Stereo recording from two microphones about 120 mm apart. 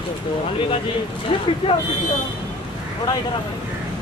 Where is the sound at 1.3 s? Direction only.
50° left (ahead or behind).